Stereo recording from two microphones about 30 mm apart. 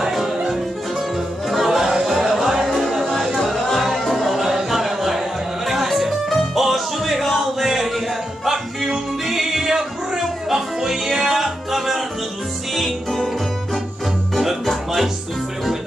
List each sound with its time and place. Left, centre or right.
0.0 s music: centre
1.5 s music: centre
4.4 s music: centre
12.7 s music: centre